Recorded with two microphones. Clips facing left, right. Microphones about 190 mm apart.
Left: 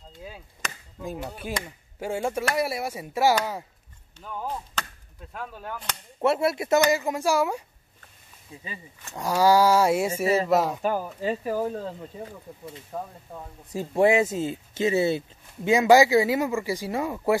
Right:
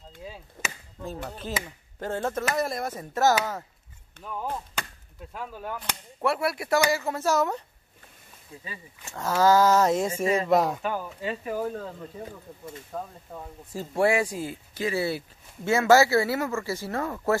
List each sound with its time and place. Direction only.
0.2 s chop: centre (ahead or behind)
1.0 s speech: 15° left (ahead or behind)
4.2 s chop: centre (ahead or behind)
6.2 s speech: 25° left (ahead or behind)
9.1 s speech: 15° left (ahead or behind)
10.8 s speech: 40° left (ahead or behind)
12.9 s speech: 5° left (ahead or behind)
13.7 s speech: 20° left (ahead or behind)